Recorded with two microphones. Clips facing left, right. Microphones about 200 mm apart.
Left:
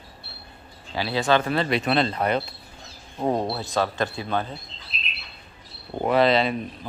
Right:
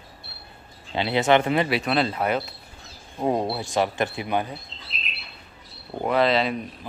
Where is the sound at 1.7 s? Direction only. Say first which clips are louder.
Left 1 dB; 5° right (ahead or behind).